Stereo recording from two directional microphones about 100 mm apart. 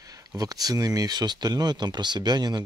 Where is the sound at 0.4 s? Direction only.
40° right (ahead or behind).